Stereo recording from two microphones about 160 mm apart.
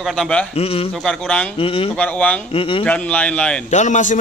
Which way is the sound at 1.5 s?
35° left (ahead or behind).